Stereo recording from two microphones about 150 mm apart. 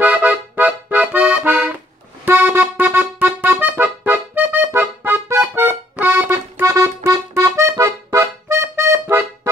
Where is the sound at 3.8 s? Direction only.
10° right (ahead or behind).